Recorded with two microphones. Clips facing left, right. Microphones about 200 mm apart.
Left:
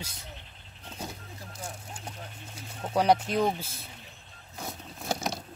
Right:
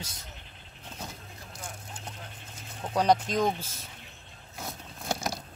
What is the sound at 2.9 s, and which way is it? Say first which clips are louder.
Speech: left 1 dB; 10° left (ahead or behind).